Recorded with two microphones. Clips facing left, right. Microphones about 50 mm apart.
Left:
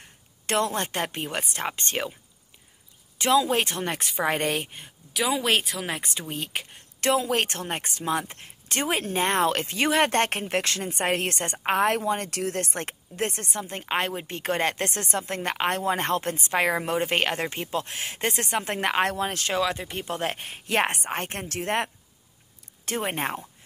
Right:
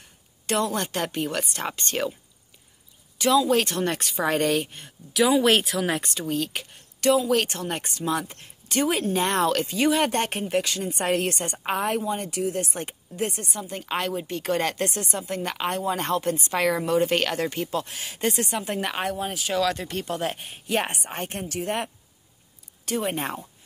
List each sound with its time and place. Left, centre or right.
0.5 s a woman's voice: left
3.2 s a woman's voice: left
4.7 s speech: centre
6.0 s a woman's voice: left
10.9 s a woman's voice: left
19.5 s speech: left
20.1 s a woman's voice: left